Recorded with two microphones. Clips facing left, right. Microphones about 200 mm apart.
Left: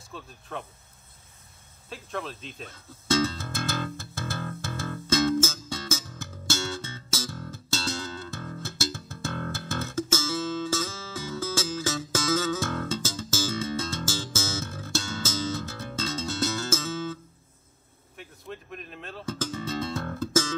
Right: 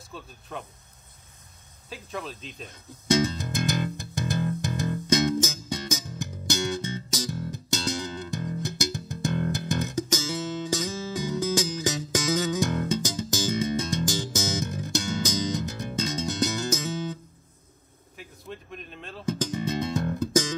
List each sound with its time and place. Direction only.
0.0 s speech: centre (ahead or behind)
1.9 s speech: centre (ahead or behind)
2.7 s music: 15° right (ahead or behind)
18.1 s a sound: centre (ahead or behind)
19.2 s music: 15° right (ahead or behind)